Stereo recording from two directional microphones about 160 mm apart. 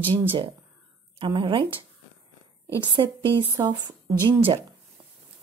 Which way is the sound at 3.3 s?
30° right (ahead or behind).